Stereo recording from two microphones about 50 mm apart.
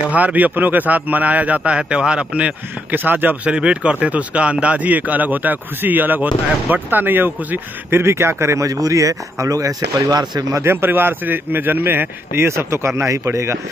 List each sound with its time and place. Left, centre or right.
0.1 s a man's voice: right
2.9 s a man's voice: right
3.4 s a man's voice: right
10.6 s a man's voice: right